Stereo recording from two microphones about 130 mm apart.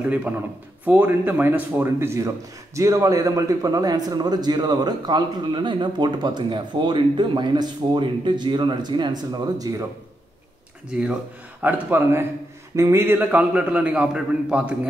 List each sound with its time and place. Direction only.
0.8 s speech: 15° right (ahead or behind)
11.6 s a man's voice: 15° right (ahead or behind)